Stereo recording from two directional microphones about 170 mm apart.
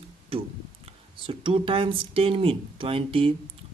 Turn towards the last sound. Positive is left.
turn(degrees=-30)  # may be behind; listen again after turning